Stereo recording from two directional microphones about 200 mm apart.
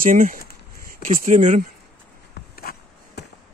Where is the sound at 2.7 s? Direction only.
50° left (ahead or behind).